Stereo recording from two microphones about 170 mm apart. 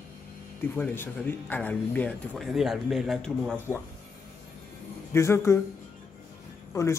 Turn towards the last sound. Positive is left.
turn(degrees=15)  # may be behind; listen again after turning